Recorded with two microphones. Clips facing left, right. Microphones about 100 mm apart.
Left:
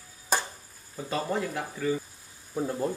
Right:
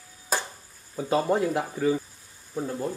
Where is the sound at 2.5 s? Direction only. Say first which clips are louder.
Left 1 dB; 5° left (ahead or behind).